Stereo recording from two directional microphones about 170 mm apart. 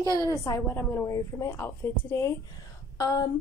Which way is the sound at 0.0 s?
20° left (ahead or behind).